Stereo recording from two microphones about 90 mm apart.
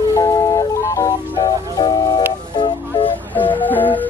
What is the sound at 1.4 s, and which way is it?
Music, 55° left (ahead or behind).